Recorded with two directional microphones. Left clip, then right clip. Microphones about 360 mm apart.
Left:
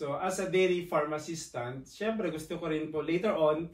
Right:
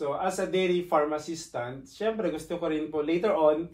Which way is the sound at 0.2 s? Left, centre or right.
Centre.